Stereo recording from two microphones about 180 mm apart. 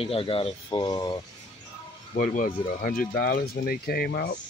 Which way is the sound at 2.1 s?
50° left (ahead or behind).